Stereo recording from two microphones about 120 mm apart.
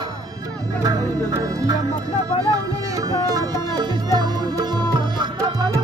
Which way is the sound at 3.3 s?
30° right (ahead or behind).